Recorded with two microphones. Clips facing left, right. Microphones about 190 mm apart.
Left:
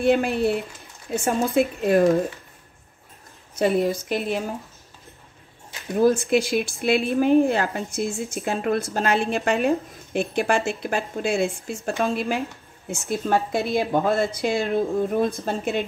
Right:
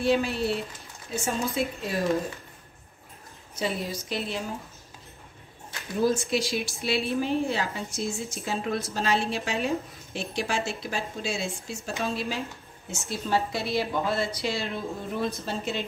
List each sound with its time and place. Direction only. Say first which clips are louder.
0.0 s speech: left 5 dB; 55° left (ahead or behind)
3.5 s a woman's voice: left 10 dB; 55° left (ahead or behind)
5.9 s a woman's voice: left 6 dB; 55° left (ahead or behind)